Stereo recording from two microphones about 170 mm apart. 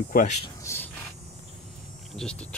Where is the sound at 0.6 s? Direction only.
15° left (ahead or behind).